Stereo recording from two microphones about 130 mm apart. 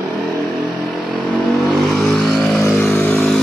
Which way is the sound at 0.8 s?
Centre (ahead or behind).